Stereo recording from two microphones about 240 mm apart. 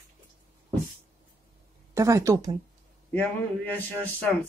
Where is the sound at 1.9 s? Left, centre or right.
Centre.